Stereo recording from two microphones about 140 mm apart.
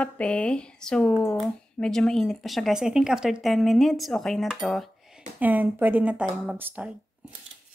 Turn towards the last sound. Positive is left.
turn(degrees=-10)  # may be behind; listen again after turning